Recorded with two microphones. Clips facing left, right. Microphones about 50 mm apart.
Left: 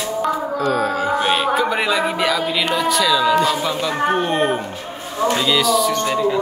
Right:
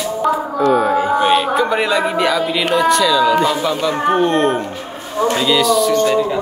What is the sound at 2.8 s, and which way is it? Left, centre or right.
Speech, centre.